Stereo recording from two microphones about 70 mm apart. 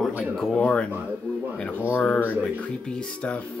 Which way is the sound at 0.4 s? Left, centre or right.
Centre.